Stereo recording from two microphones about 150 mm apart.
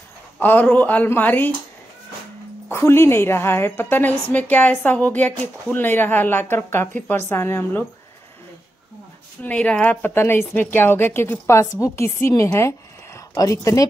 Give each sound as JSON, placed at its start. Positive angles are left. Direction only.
{"t": 0.4, "sound": "a woman's voice", "side_deg": 10}
{"t": 2.7, "sound": "a woman's voice", "side_deg": 15}
{"t": 9.4, "sound": "a woman's voice", "side_deg": 10}